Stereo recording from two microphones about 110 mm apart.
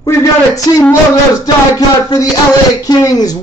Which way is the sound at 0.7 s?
30° left (ahead or behind).